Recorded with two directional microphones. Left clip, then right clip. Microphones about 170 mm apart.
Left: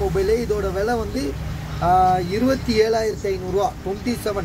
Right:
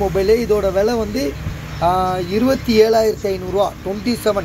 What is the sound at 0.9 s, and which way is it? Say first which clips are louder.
Speech: right 4 dB; centre (ahead or behind).